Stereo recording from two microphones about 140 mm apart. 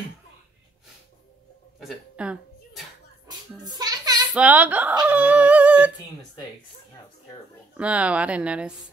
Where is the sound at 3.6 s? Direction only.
30° right (ahead or behind).